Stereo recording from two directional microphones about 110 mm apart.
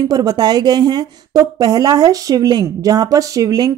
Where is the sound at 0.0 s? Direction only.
35° right (ahead or behind).